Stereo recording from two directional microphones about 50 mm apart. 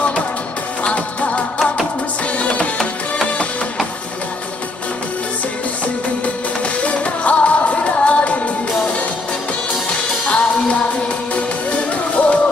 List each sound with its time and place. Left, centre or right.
0.8 s music: left
6.2 s music: left
10.2 s music: left